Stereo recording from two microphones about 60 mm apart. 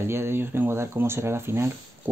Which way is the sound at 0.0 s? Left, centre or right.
Right.